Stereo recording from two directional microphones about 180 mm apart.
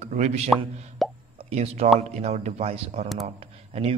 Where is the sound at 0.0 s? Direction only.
40° right (ahead or behind).